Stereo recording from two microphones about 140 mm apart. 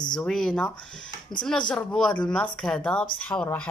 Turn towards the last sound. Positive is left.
turn(degrees=10)  # may be behind; listen again after turning